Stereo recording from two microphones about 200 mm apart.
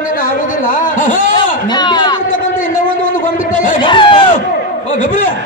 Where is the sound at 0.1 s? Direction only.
40° left (ahead or behind).